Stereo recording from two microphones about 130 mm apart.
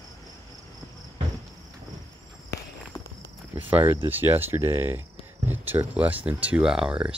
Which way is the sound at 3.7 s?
15° right (ahead or behind).